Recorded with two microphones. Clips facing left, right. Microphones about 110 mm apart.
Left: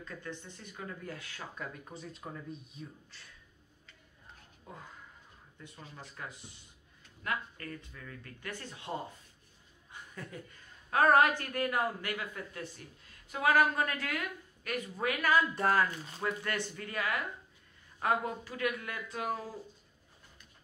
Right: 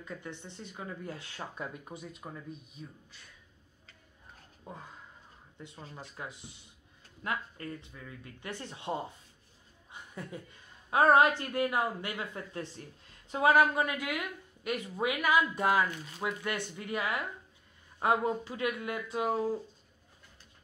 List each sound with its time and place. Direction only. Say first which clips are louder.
0.0 s speech: right 1 dB; 15° right (ahead or behind)
2.0 s speech: even; 5° right (ahead or behind)
4.7 s speech: right 3 dB; 25° right (ahead or behind)
5.9 s a woman's voice: right 2 dB; 20° right (ahead or behind)